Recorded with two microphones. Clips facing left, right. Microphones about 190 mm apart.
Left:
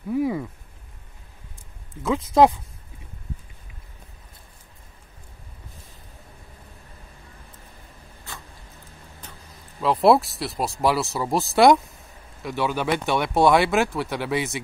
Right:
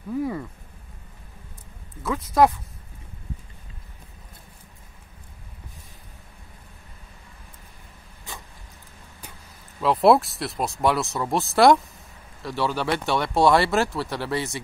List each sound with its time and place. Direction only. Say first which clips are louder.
0.1 s a man's voice: left 3 dB; 10° left (ahead or behind)
2.0 s speech: left 2 dB; 20° left (ahead or behind)
8.3 s a sound: right 1 dB; 15° right (ahead or behind)
9.8 s speech: even; centre (ahead or behind)
12.4 s a man's voice: left 1 dB; 15° left (ahead or behind)
13.4 s speech: left 1 dB; centre (ahead or behind)